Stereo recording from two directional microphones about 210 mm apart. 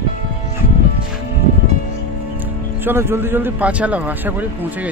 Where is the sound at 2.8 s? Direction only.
10° right (ahead or behind).